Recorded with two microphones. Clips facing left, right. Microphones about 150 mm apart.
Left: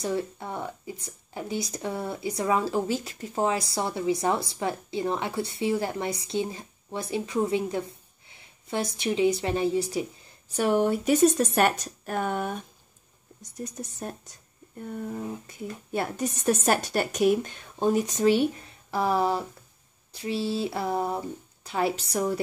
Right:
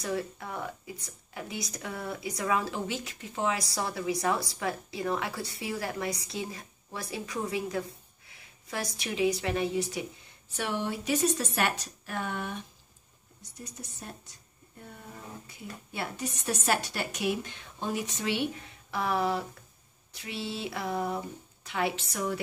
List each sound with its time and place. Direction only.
0.0 s speech: 25° left (ahead or behind)
3.5 s speech: 25° left (ahead or behind)
9.4 s a sound: 30° left (ahead or behind)
10.5 s a woman's voice: 45° left (ahead or behind)
14.0 s a woman's voice: 50° left (ahead or behind)
15.4 s a woman's voice: 50° left (ahead or behind); by 19.4 s 30° left (ahead or behind)
20.1 s a sound: 35° left (ahead or behind)